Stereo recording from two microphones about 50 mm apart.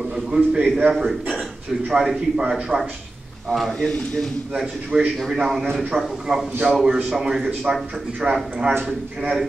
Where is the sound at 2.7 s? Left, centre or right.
Right.